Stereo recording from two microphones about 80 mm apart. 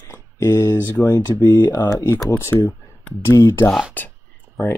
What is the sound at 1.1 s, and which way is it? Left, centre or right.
Speech, left.